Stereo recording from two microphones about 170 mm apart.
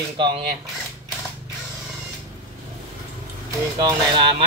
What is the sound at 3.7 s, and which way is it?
Speech, 25° right (ahead or behind).